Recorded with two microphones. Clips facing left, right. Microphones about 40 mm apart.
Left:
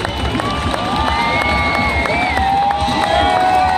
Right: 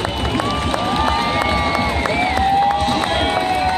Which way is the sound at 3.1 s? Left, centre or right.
Centre.